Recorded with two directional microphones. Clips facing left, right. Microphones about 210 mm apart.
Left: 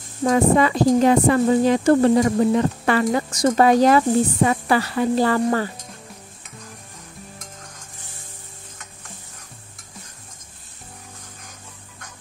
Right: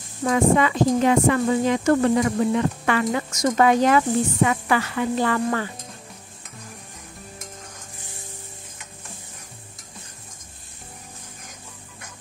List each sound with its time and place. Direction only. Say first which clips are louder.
0.2 s speech: left 2 dB; 35° left (ahead or behind)